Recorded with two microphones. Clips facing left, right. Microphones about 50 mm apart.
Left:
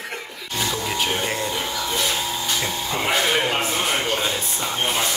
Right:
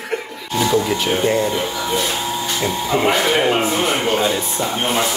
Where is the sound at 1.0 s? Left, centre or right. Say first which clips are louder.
Right 7 dB; centre.